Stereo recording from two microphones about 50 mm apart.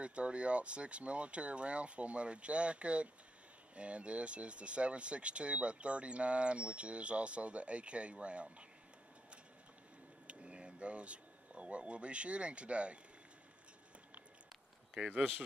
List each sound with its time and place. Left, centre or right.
0.0 s speech: right
10.2 s speech: right